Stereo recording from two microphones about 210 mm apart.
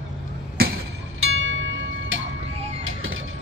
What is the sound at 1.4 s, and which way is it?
Music, 65° right (ahead or behind).